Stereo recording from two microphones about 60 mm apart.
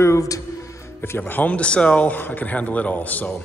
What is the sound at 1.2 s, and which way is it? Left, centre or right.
Speech, left.